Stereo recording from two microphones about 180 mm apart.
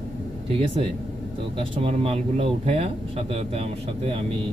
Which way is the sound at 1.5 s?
30° right (ahead or behind).